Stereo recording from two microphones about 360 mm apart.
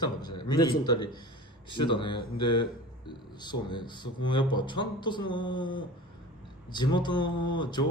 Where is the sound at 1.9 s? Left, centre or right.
Centre.